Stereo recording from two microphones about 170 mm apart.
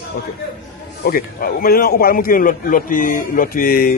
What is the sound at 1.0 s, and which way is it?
A man's voice, 60° left (ahead or behind).